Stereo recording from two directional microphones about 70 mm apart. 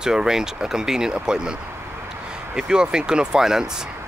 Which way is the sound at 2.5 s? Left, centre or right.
Centre.